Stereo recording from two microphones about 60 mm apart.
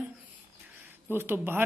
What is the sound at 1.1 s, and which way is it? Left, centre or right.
Speech, right.